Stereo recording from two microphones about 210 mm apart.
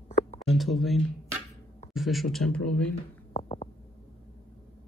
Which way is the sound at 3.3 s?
30° left (ahead or behind).